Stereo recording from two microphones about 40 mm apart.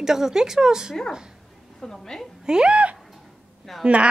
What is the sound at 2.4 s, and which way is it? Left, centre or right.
Speech, centre.